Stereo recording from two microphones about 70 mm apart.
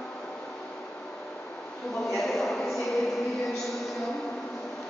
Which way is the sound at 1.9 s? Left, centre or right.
Centre.